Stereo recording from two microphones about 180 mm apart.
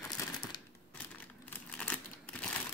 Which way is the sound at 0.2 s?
20° left (ahead or behind).